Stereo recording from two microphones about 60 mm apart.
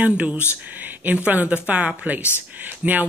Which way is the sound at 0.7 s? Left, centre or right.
Right.